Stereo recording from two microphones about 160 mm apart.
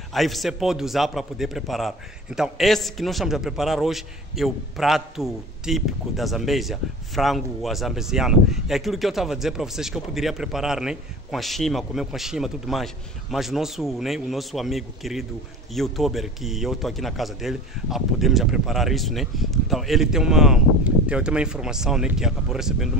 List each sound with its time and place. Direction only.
0.1 s a man's voice: centre (ahead or behind)